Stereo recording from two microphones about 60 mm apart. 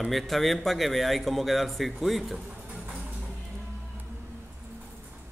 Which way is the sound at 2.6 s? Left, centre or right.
Centre.